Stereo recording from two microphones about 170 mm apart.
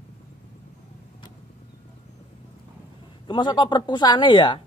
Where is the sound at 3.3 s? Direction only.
25° left (ahead or behind).